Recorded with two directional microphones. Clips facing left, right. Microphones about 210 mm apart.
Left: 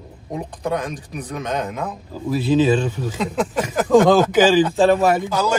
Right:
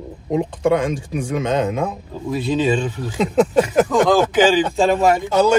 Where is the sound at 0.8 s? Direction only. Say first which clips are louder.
Right 7 dB; 25° right (ahead or behind).